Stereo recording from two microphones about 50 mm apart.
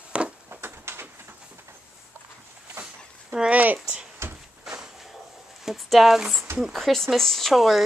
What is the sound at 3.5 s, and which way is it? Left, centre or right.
Speech, right.